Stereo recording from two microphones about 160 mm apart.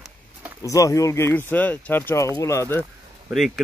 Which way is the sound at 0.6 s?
20° left (ahead or behind).